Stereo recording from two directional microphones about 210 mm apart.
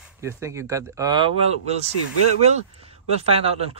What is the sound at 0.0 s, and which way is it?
Speech, 15° right (ahead or behind).